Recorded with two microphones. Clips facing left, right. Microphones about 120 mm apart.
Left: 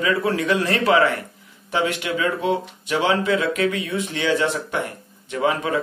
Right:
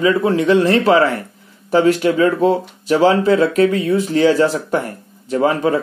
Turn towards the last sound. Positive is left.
turn(degrees=-35)  # may be behind; listen again after turning